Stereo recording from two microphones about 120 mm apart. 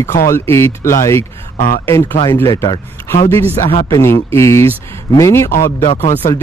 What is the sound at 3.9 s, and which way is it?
Speech, 20° left (ahead or behind).